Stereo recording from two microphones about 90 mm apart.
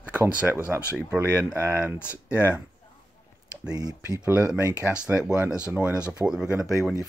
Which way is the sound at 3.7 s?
45° right (ahead or behind).